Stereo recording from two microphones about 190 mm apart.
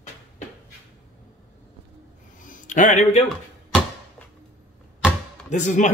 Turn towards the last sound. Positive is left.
turn(degrees=40)  # may be behind; listen again after turning